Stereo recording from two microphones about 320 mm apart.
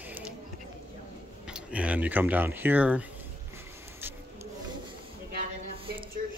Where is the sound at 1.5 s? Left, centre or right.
Centre.